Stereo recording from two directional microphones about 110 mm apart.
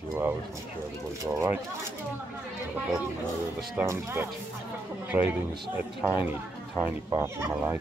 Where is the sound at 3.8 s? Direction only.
25° right (ahead or behind).